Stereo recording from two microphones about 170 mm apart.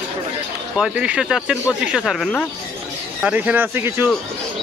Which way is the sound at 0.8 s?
5° right (ahead or behind).